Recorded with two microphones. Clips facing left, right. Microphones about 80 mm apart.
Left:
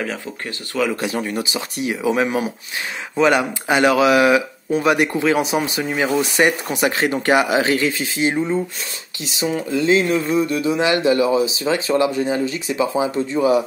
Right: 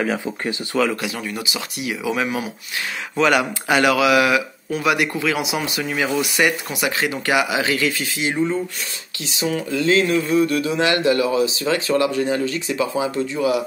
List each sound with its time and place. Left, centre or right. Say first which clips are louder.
0.0 s speech: right 4 dB; centre
1.0 s speech: left 4 dB; left
3.2 s speech: left 2 dB; left
8.4 s speech: left 1 dB; centre
9.2 s speech: left 1 dB; left